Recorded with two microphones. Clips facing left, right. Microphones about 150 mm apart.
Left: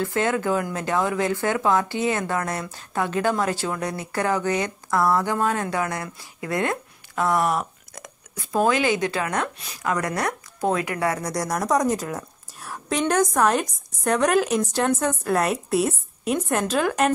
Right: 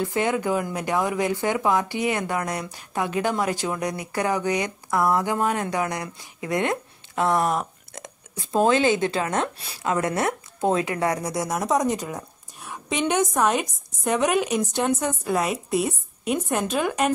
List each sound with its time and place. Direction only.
0.0 s a woman's voice: 15° right (ahead or behind); by 17.1 s centre (ahead or behind)